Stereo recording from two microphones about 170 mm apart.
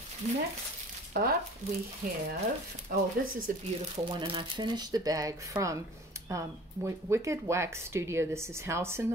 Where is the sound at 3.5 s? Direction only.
50° right (ahead or behind).